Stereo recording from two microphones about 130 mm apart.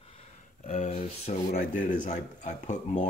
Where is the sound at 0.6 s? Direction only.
65° left (ahead or behind).